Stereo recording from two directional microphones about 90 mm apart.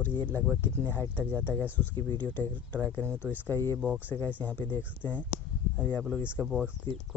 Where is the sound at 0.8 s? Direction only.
20° left (ahead or behind).